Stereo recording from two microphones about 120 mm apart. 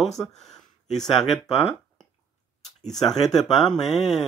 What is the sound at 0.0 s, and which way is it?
Speech, centre (ahead or behind).